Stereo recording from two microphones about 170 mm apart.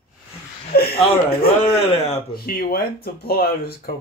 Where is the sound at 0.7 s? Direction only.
65° left (ahead or behind).